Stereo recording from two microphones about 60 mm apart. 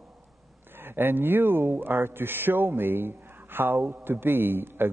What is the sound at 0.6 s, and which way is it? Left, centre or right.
Speech, right.